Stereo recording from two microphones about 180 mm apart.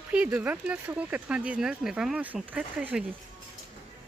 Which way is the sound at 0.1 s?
5° right (ahead or behind).